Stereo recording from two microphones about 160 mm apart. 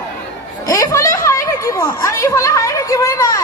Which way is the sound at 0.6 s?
20° left (ahead or behind).